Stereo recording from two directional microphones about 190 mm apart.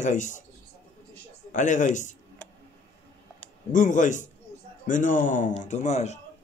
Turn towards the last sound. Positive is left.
turn(degrees=35)  # may be behind; listen again after turning